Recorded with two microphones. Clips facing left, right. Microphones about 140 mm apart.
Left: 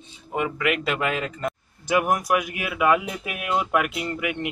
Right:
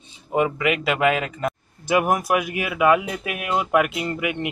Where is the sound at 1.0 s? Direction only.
75° right (ahead or behind).